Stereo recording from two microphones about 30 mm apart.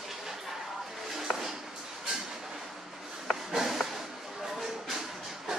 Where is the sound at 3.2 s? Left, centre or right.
Centre.